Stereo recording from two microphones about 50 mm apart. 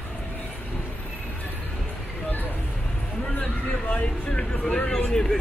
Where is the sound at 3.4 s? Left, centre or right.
Left.